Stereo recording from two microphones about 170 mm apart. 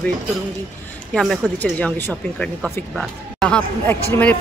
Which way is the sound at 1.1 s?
5° left (ahead or behind).